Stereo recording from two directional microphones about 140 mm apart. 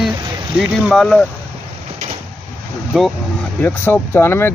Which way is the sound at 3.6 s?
15° left (ahead or behind).